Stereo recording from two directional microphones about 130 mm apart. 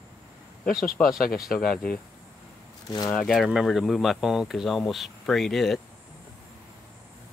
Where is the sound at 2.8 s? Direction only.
30° left (ahead or behind).